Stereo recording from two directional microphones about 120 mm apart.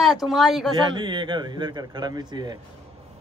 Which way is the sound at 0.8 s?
40° right (ahead or behind).